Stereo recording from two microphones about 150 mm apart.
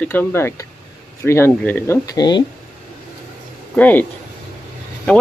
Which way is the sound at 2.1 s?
30° left (ahead or behind).